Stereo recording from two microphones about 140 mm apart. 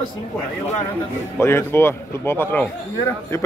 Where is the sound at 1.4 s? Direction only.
15° left (ahead or behind).